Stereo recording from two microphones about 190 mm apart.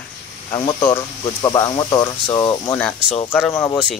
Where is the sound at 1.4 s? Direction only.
20° left (ahead or behind).